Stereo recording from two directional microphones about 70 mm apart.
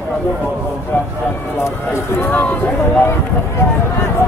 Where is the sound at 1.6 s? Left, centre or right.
Left.